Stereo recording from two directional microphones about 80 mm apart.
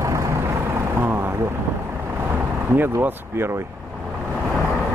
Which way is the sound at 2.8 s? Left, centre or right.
Right.